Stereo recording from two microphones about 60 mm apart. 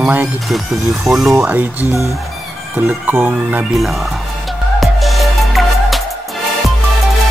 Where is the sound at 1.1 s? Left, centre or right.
Centre.